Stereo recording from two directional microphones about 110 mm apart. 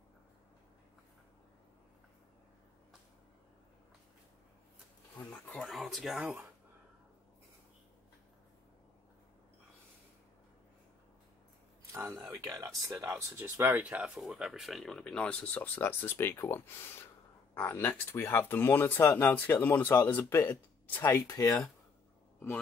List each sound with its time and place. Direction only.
5.3 s a sound: 10° left (ahead or behind)
5.7 s speech: centre (ahead or behind)
12.1 s speech: 35° right (ahead or behind); by 21.2 s 20° left (ahead or behind)
21.2 s speech: 30° left (ahead or behind)